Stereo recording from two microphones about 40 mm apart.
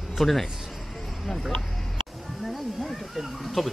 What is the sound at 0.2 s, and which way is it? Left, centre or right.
Speech, centre.